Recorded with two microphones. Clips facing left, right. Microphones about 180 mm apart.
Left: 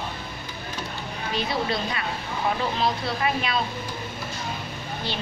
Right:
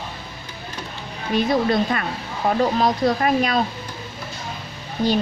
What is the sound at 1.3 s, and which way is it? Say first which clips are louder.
Speech: right 9 dB; 50° right (ahead or behind).